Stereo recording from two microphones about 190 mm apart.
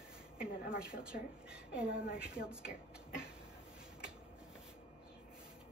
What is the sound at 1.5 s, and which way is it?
Speech, 5° right (ahead or behind).